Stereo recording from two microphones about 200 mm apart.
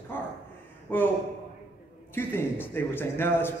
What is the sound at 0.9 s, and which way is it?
Speech, 10° left (ahead or behind).